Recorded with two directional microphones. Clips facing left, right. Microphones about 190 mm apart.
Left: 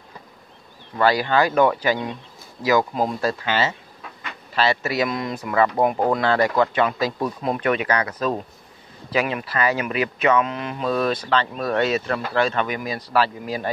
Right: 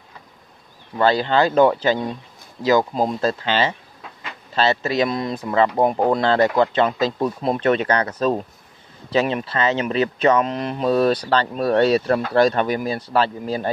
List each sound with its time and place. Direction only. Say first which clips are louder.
0.9 s speech: right 1 dB; 25° right (ahead or behind)